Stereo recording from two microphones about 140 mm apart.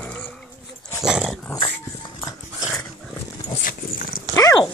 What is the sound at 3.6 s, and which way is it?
Dog, 90° left.